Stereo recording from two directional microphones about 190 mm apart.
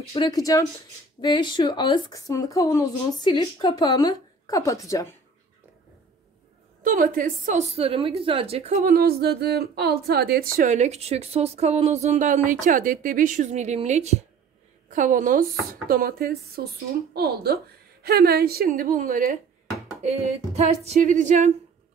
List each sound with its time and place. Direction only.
0.1 s speech: 25° left (ahead or behind)
6.8 s a woman's voice: 45° right (ahead or behind)
20.0 s a woman's voice: 35° right (ahead or behind)